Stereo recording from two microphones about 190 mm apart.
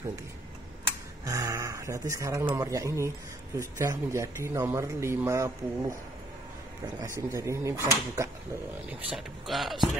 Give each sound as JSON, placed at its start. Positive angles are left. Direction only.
{"t": 1.2, "sound": "speech", "side_deg": -15}
{"t": 7.0, "sound": "speech", "side_deg": -15}
{"t": 9.1, "sound": "speech", "side_deg": 0}